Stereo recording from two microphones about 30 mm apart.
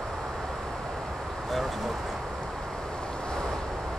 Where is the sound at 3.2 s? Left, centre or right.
Left.